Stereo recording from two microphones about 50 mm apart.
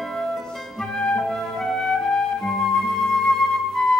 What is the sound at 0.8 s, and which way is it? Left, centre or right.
Flute, centre.